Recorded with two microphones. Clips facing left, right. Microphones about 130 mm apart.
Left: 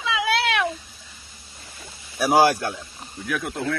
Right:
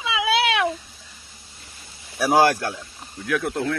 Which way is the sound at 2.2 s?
5° left (ahead or behind).